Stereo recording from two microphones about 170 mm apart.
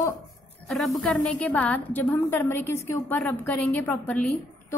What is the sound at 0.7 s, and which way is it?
A woman's voice, centre (ahead or behind).